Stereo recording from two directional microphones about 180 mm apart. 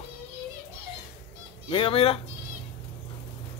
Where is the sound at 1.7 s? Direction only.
30° left (ahead or behind).